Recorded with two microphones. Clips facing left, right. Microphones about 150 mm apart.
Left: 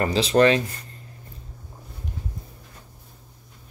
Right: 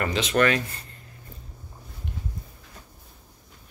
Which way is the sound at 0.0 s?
35° left (ahead or behind).